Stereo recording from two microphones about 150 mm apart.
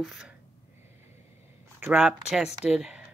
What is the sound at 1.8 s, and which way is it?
Speech, 5° right (ahead or behind).